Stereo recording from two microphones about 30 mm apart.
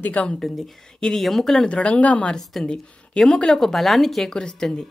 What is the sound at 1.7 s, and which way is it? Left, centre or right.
Speech, left.